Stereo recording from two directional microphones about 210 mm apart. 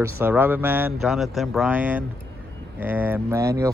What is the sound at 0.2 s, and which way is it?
Speech, 10° right (ahead or behind).